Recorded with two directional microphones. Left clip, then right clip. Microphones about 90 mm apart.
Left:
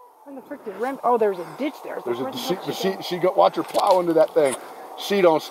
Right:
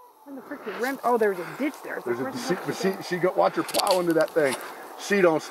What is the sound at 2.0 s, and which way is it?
A man's voice, 20° left (ahead or behind).